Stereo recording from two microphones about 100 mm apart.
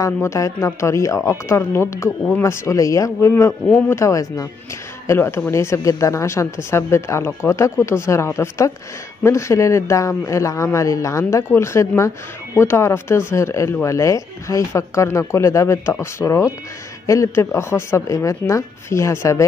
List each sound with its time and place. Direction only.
0.0 s speech: 30° left (ahead or behind)